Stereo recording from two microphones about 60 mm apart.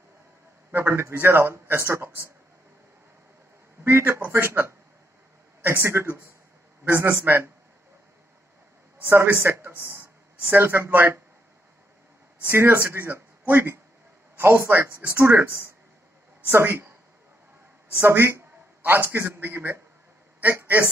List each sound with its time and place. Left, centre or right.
0.7 s speech: right
3.8 s speech: right
9.0 s speech: right
12.4 s speech: right
14.3 s a sound: right
14.7 s speech: right
18.0 s speech: right